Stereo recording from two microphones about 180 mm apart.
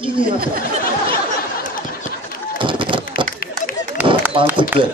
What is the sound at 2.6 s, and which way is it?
Run, 25° right (ahead or behind).